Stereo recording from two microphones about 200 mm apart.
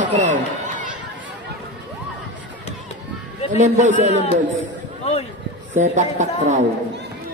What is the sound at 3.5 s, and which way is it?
Speech, 35° right (ahead or behind).